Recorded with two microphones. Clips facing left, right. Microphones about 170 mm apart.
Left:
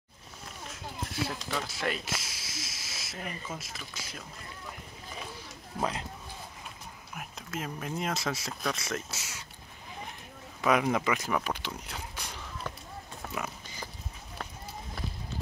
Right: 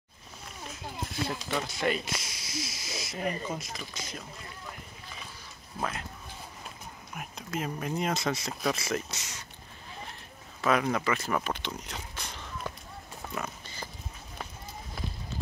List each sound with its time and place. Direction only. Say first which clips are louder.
1.2 s speech: right 2 dB; centre (ahead or behind)
5.8 s speech: left 2 dB; 20° left (ahead or behind)
7.2 s speech: right 3 dB; centre (ahead or behind)
10.6 s speech: left 1 dB; 15° left (ahead or behind)
13.3 s horse: right 1 dB; 10° left (ahead or behind)